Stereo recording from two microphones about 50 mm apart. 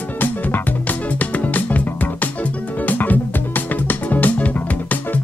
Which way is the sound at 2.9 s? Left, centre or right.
Left.